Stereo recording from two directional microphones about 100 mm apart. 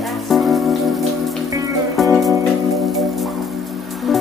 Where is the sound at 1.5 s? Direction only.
35° right (ahead or behind).